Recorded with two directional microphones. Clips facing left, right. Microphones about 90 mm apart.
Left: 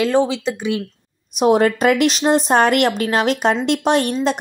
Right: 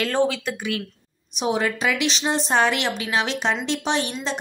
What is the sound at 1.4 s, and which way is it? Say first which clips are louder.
A woman's voice: left 9 dB; 50° left (ahead or behind).